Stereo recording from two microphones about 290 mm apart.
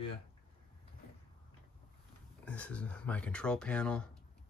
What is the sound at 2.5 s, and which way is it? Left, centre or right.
Speech, centre.